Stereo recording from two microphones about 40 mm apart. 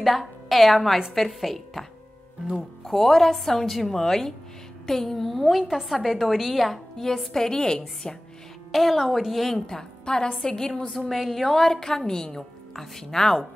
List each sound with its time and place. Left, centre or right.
0.0 s a woman's voice: centre
8.7 s a woman's voice: centre
9.7 s a woman's voice: centre
11.1 s a woman's voice: centre